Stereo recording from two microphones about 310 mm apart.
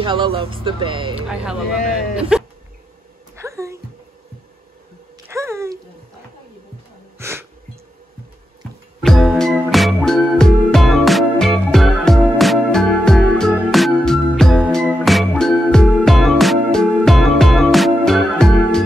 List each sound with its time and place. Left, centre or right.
0.0 s speech: centre
1.3 s speech: centre
2.1 s insect: centre
3.3 s music: centre
5.3 s a sound: centre
7.2 s a sound: centre
9.0 s music: centre